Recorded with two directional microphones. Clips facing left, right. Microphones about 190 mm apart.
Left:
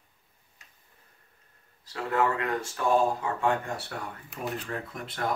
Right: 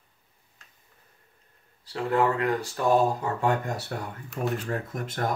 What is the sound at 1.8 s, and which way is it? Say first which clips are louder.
Speech: right 3 dB; 30° right (ahead or behind).